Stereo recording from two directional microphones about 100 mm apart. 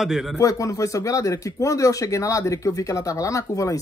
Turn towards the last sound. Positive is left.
turn(degrees=35)  # may be behind; listen again after turning